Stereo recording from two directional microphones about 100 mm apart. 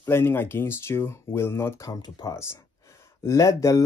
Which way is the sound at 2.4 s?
30° left (ahead or behind).